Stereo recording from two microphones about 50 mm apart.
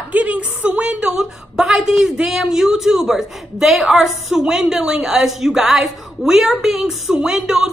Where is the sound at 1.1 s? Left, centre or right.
Centre.